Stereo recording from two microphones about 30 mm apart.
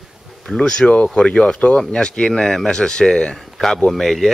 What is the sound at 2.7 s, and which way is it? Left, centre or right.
Speech, left.